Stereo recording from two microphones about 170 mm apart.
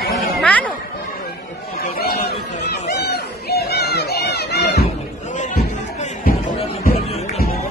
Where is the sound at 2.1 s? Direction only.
70° left (ahead or behind).